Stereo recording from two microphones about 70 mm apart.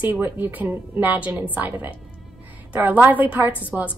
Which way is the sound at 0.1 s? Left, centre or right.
Right.